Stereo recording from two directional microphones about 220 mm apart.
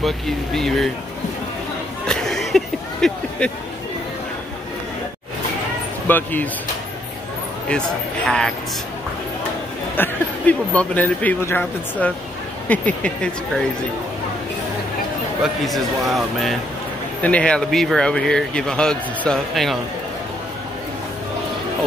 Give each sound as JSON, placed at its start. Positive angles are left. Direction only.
{"t": 0.0, "sound": "speech", "side_deg": 0}
{"t": 2.0, "sound": "a sound", "side_deg": 0}
{"t": 6.0, "sound": "speech", "side_deg": 10}
{"t": 8.3, "sound": "speech", "side_deg": 5}
{"t": 9.9, "sound": "speech", "side_deg": 10}
{"t": 15.4, "sound": "speech", "side_deg": 0}